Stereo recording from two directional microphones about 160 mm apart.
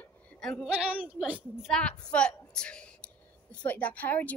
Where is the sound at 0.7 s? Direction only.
10° right (ahead or behind).